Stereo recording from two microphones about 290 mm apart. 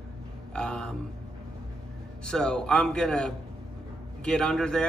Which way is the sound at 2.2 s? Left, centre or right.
Centre.